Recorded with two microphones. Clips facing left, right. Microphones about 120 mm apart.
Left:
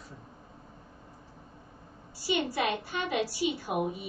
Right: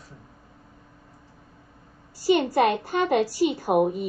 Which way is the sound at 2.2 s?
45° right (ahead or behind).